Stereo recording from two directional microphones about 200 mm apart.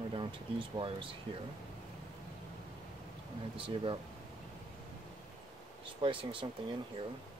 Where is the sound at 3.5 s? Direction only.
25° right (ahead or behind).